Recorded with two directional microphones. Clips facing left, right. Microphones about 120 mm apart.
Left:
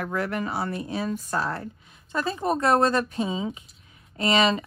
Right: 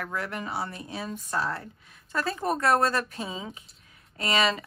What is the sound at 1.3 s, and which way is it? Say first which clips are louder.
A woman's voice: left 2 dB; 30° left (ahead or behind).